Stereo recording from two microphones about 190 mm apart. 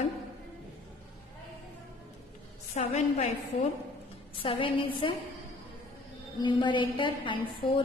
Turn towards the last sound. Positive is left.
turn(degrees=25)  # may be behind; listen again after turning